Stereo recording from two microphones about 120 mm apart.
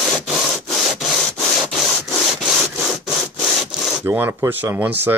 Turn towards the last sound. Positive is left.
turn(degrees=-15)  # may be behind; listen again after turning